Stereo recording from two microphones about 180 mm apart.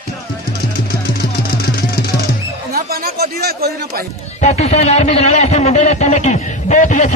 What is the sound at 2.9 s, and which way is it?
A man's voice, 60° right (ahead or behind).